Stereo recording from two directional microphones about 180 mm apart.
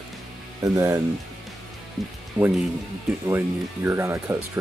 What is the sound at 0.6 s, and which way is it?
Speech, 15° right (ahead or behind).